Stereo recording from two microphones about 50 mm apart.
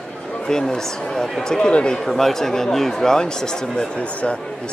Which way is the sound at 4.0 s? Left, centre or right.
Left.